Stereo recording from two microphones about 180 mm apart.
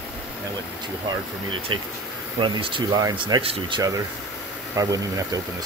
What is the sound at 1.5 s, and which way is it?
Speech, 30° right (ahead or behind).